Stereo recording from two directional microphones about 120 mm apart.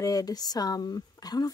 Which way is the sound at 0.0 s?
30° left (ahead or behind).